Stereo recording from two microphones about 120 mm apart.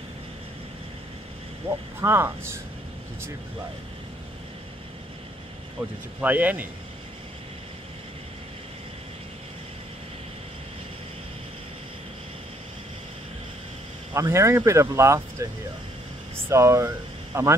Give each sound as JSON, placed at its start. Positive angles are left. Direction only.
{"t": 1.7, "sound": "speech", "side_deg": -20}
{"t": 6.2, "sound": "speech", "side_deg": -15}
{"t": 14.1, "sound": "speech", "side_deg": -25}